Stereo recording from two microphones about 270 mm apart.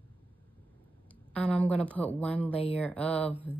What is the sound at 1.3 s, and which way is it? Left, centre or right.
A woman's voice, centre.